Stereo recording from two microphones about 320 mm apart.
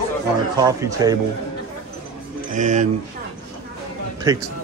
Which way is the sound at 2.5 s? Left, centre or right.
Right.